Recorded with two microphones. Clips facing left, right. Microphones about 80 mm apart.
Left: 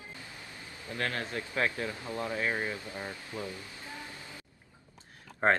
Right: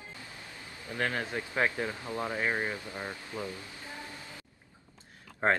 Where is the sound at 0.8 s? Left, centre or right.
Right.